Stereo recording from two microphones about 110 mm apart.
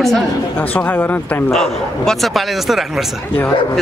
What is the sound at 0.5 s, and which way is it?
Speech, 15° left (ahead or behind).